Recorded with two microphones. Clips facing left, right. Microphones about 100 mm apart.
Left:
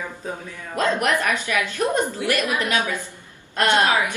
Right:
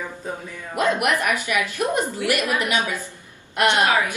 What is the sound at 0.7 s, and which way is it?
A woman's voice, 15° right (ahead or behind).